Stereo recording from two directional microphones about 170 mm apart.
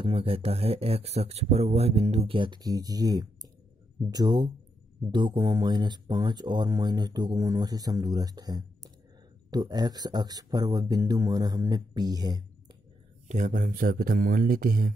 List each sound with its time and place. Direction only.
0.0 s speech: 35° right (ahead or behind)
13.3 s speech: 50° right (ahead or behind)